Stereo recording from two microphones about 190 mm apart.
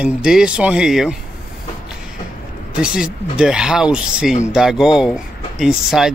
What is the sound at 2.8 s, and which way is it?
Speech, 5° right (ahead or behind).